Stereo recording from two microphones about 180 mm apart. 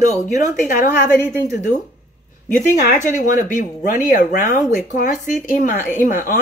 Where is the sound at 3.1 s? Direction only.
45° left (ahead or behind).